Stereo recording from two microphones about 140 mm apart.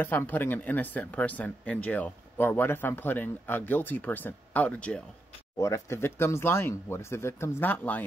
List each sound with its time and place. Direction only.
0.0 s speech: 15° left (ahead or behind)
5.6 s speech: 20° left (ahead or behind)